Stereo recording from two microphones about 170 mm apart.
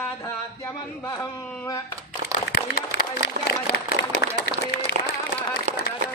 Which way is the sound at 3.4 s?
75° right (ahead or behind).